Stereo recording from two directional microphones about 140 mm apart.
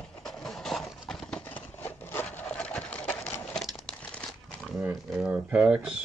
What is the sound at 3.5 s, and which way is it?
Crumpling, centre (ahead or behind).